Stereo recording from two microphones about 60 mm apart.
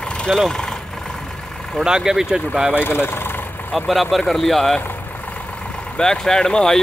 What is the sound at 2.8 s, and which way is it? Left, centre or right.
Speech, left.